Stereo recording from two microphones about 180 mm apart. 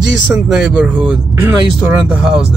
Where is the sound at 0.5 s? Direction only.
5° right (ahead or behind).